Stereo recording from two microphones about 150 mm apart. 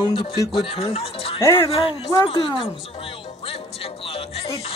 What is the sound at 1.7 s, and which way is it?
Speech, 35° left (ahead or behind).